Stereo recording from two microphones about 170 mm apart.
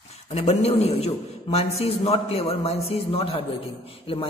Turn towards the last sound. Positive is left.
turn(degrees=30)  # may be behind; listen again after turning